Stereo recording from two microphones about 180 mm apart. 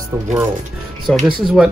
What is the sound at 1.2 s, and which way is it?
Speech, 5° right (ahead or behind).